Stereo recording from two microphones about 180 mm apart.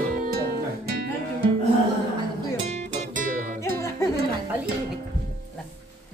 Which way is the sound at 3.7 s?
15° left (ahead or behind).